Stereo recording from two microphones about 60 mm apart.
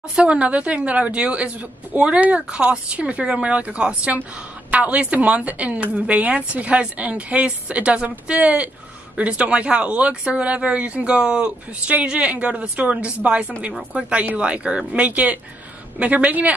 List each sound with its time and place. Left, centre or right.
0.1 s speech: centre